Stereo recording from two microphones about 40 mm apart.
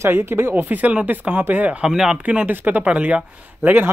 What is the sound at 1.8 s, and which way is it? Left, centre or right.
Speech, centre.